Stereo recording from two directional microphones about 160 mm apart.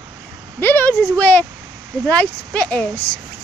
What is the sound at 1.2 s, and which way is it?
Speech, 10° left (ahead or behind).